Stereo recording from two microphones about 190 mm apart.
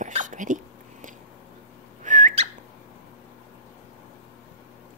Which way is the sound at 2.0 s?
40° right (ahead or behind).